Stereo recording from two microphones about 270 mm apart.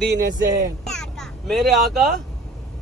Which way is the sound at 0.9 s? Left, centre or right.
Centre.